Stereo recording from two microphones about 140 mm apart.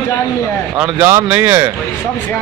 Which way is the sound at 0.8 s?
15° right (ahead or behind).